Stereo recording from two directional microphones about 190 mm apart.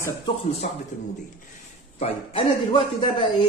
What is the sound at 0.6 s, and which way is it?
Speech, 45° left (ahead or behind).